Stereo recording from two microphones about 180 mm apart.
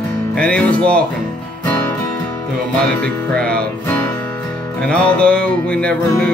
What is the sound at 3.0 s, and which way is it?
Music, 5° left (ahead or behind).